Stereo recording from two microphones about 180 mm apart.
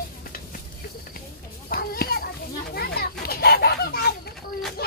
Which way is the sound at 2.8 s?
60° left (ahead or behind).